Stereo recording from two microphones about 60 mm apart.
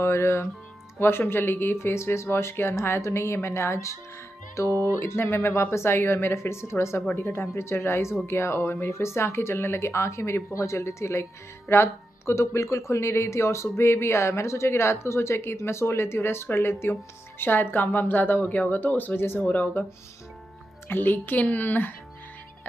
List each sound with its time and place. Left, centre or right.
0.0 s speech: left
4.8 s speech: left
20.9 s speech: left